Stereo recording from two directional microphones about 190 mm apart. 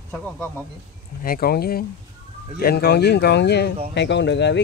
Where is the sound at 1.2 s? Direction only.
50° left (ahead or behind).